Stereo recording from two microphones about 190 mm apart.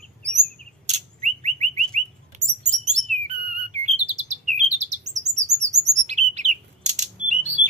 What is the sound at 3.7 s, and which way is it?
Chirp, 40° right (ahead or behind).